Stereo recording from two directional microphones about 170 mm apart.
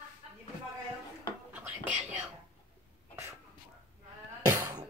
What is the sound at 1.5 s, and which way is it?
Whispering, 10° right (ahead or behind).